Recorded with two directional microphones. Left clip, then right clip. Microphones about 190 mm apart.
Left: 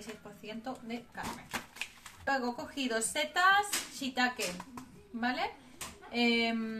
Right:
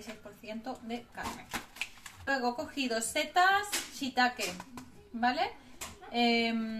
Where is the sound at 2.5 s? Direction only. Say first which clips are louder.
Right 1 dB; 10° left (ahead or behind).